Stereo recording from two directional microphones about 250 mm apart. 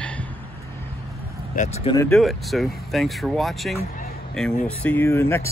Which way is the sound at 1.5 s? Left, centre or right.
Left.